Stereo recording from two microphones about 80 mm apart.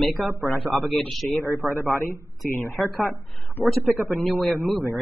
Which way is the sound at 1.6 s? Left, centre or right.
Right.